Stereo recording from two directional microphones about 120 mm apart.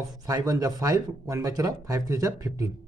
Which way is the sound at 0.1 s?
30° right (ahead or behind).